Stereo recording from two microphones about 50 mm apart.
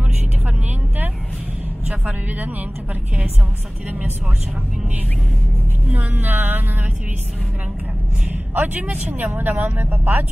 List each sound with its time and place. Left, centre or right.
1.9 s speech: right
5.9 s speech: right
8.3 s speech: right